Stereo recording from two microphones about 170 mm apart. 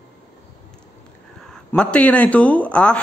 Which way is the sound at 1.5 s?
5° left (ahead or behind).